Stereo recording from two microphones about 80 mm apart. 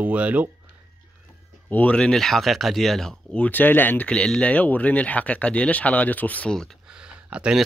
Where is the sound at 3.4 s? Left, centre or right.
Left.